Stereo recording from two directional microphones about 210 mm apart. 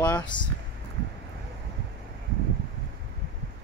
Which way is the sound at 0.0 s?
20° left (ahead or behind).